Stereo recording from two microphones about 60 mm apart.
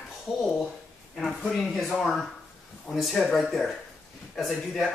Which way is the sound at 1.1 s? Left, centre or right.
Centre.